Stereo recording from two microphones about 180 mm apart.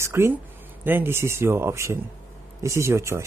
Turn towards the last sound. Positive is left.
turn(degrees=-15)  # may be behind; listen again after turning